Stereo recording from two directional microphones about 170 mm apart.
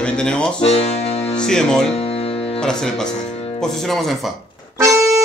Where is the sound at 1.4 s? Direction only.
5° left (ahead or behind).